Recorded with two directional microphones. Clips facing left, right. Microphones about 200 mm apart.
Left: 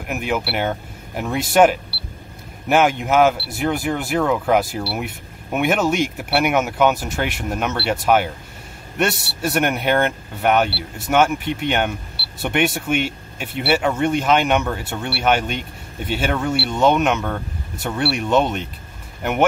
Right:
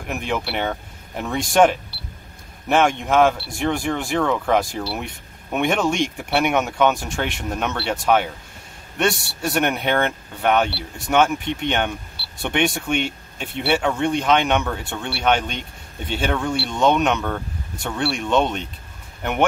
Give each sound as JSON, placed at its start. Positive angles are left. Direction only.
{"t": 0.0, "sound": "speech", "side_deg": 5}